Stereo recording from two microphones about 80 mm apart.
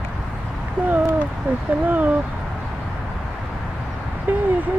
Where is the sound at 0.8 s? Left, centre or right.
Right.